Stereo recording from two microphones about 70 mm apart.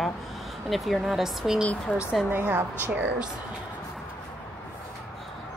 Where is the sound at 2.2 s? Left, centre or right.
Right.